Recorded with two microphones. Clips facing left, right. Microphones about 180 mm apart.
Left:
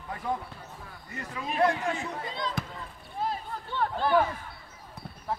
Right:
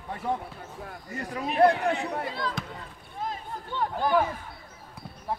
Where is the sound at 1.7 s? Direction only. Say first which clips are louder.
Right 4 dB; 65° right (ahead or behind).